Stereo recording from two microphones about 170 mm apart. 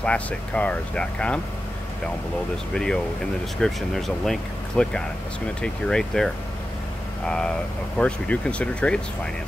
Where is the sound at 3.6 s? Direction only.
Centre (ahead or behind).